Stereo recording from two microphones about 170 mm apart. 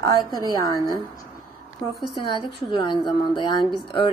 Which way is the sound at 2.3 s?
30° left (ahead or behind).